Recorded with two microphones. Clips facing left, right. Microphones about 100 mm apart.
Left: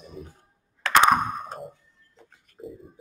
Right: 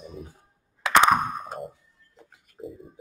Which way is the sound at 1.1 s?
Centre (ahead or behind).